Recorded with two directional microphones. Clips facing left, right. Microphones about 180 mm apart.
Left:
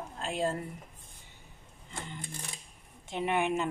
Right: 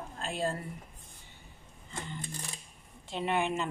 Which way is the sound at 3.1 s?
15° left (ahead or behind).